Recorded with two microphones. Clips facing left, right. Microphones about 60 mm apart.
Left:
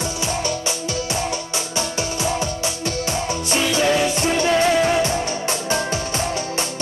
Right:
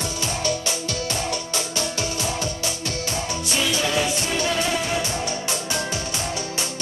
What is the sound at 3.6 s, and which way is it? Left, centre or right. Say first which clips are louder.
Music: left 5 dB; left.